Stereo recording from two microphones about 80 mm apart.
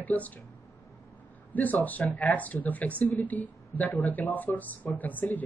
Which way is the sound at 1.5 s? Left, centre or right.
Left.